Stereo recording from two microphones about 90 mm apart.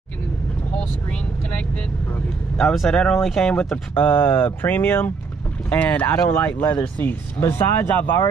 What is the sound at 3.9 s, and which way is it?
Speech, 25° left (ahead or behind).